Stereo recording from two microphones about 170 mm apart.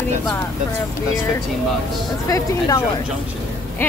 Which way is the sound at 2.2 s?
20° left (ahead or behind).